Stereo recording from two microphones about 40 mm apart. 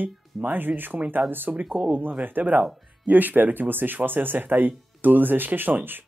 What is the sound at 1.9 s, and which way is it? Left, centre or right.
Speech, right.